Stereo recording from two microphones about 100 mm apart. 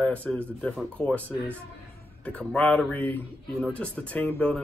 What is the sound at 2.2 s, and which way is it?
Speech, 15° left (ahead or behind).